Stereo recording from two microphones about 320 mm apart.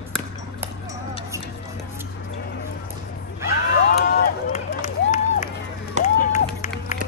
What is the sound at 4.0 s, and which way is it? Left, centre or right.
Run, left.